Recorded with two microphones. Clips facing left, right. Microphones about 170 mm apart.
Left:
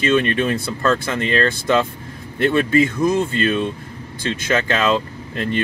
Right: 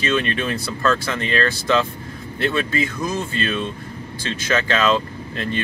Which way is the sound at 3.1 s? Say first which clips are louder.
Left 6 dB; 60° left (ahead or behind).